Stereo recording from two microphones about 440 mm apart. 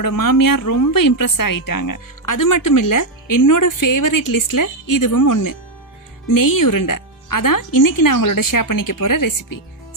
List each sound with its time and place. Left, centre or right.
0.0 s speech: left